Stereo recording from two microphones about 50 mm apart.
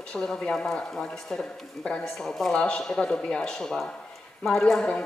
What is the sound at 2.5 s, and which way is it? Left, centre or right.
A woman's voice, centre.